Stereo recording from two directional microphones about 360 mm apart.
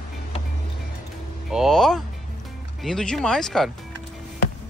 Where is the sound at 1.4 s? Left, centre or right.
Centre.